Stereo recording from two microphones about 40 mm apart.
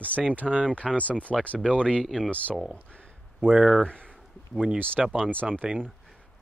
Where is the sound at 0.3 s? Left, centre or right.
Right.